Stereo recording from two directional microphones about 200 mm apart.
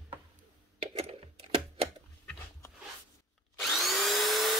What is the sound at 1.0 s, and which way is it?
Typing, 30° right (ahead or behind).